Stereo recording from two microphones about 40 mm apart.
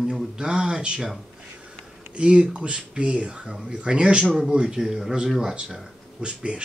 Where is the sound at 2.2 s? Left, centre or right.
Right.